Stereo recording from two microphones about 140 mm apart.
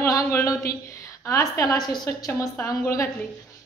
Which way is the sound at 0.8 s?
25° left (ahead or behind).